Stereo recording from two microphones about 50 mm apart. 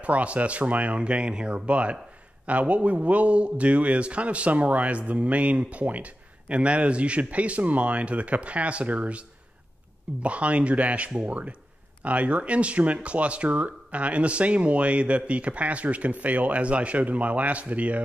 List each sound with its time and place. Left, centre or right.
0.0 s a man's voice: right
10.2 s a man's voice: right